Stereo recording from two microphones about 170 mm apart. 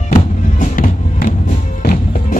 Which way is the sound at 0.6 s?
50° left (ahead or behind).